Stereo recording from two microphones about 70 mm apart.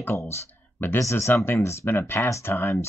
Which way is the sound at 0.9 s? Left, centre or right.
Left.